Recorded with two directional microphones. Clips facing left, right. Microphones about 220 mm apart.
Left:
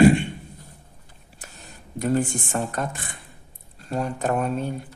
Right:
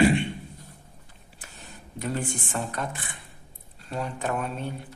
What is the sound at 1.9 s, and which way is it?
Speech, 45° left (ahead or behind).